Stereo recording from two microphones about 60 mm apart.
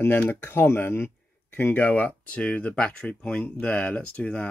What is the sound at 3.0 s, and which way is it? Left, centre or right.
Speech, left.